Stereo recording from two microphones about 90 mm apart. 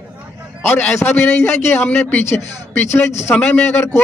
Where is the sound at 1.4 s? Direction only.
25° left (ahead or behind).